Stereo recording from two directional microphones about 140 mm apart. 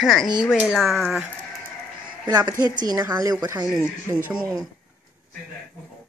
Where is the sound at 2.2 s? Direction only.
30° right (ahead or behind).